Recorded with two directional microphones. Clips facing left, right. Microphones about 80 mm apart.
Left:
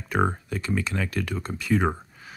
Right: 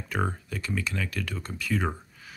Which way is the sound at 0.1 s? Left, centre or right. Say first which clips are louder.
Left 6 dB; left.